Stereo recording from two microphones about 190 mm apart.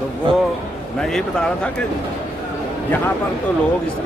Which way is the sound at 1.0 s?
5° left (ahead or behind).